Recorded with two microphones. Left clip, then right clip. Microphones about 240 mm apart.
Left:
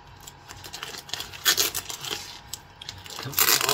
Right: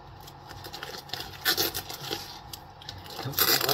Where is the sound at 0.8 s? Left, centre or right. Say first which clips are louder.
Left 3 dB; centre.